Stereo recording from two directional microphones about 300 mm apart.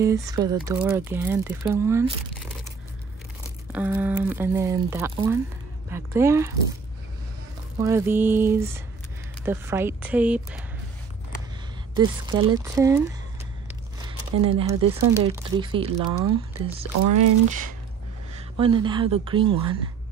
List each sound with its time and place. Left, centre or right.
0.0 s speech: centre
3.7 s speech: centre
7.8 s speech: centre
12.0 s speech: centre
17.0 s speech: right
18.6 s speech: centre